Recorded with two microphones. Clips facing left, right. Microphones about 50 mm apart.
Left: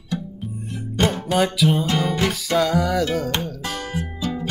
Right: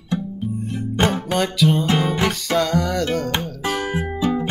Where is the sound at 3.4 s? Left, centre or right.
Centre.